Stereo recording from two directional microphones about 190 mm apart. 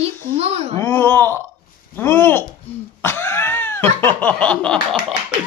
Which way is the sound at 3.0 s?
10° left (ahead or behind).